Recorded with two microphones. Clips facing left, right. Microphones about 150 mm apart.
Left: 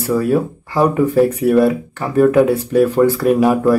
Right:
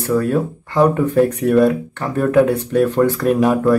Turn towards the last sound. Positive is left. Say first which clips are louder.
# left 2 dB
turn(degrees=5)  # may be behind; listen again after turning